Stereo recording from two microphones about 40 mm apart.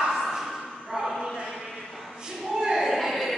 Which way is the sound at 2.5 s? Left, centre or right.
Centre.